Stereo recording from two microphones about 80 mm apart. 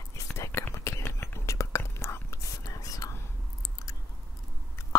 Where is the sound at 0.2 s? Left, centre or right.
Left.